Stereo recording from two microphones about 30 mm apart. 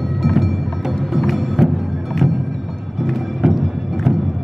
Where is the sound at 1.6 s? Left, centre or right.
Centre.